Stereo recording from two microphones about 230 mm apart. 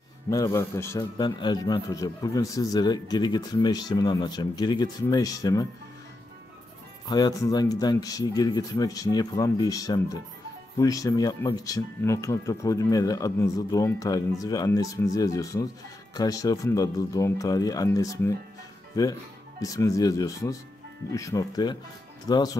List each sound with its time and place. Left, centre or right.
0.3 s a man's voice: centre
7.1 s a man's voice: centre
19.6 s a man's voice: centre